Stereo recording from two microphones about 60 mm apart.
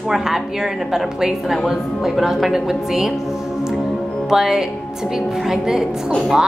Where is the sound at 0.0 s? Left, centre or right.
Centre.